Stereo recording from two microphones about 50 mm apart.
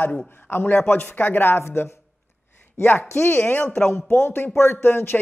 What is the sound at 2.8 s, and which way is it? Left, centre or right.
Speech, left.